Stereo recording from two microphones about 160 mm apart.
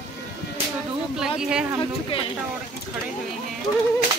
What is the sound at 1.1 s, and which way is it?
Speech, 5° right (ahead or behind).